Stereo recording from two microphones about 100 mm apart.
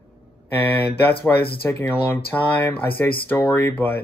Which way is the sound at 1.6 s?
20° left (ahead or behind).